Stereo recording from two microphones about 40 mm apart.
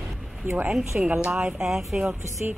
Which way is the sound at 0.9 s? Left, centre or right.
Right.